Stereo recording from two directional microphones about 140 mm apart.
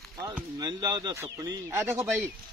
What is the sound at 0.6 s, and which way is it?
A man's voice, 30° right (ahead or behind).